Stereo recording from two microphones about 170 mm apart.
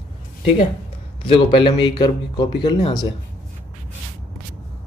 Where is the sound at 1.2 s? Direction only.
30° left (ahead or behind).